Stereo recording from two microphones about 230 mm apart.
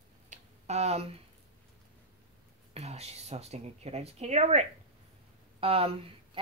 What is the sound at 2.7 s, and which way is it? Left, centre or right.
A woman's voice, right.